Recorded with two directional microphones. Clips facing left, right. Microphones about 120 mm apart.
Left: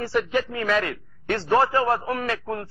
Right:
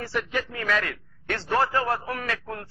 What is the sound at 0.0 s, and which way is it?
A man's voice, 20° left (ahead or behind).